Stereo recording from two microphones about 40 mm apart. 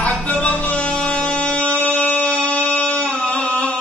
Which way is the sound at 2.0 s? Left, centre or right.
Left.